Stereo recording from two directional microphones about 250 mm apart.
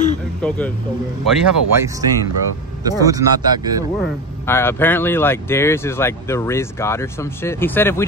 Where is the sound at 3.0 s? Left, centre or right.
Centre.